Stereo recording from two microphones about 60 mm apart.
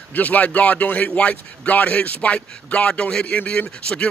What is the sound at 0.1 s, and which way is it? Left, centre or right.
A man's voice, left.